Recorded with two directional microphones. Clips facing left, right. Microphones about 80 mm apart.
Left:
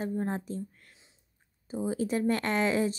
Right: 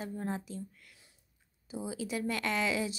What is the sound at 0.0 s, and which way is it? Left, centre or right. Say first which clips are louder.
A woman's voice: left 5 dB; left.